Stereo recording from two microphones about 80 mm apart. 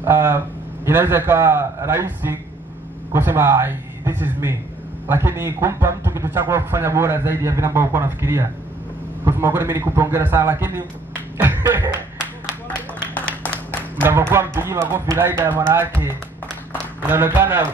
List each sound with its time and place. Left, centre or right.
0.0 s a man's voice: right
11.3 s music: right
13.1 s a sound: left
14.0 s speech: right
17.1 s speech: right